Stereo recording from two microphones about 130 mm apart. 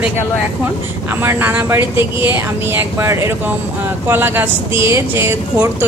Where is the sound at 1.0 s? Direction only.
15° right (ahead or behind).